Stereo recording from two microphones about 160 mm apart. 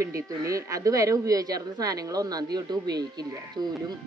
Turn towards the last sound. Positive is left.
turn(degrees=-25)  # may be behind; listen again after turning